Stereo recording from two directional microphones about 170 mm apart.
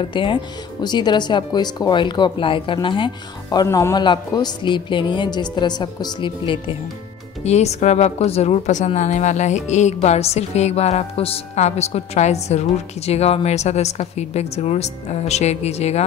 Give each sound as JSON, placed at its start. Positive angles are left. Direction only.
{"t": 0.0, "sound": "speech", "side_deg": 30}
{"t": 7.4, "sound": "speech", "side_deg": 40}